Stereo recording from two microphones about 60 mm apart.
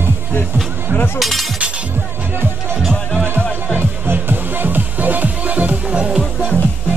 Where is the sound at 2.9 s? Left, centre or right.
Centre.